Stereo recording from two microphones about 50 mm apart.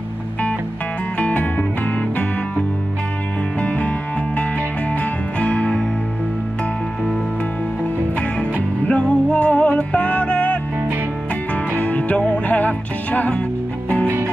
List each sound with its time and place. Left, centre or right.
1.1 s music: left
3.6 s music: left
5.4 s music: left
8.8 s music: left
11.8 s music: left
14.0 s music: right